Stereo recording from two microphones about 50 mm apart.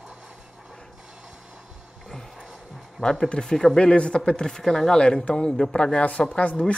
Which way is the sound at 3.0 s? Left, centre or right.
Centre.